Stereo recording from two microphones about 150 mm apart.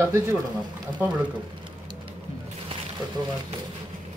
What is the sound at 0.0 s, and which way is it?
Speech, 15° right (ahead or behind).